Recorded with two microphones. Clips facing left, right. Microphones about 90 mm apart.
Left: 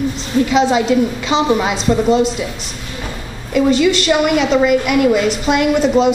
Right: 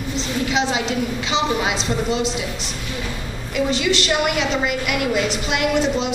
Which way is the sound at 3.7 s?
45° left (ahead or behind).